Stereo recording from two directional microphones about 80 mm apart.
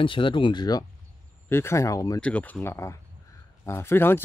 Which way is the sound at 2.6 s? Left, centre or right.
Left.